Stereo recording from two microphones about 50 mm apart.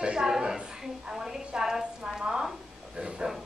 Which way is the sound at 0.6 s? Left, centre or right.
Centre.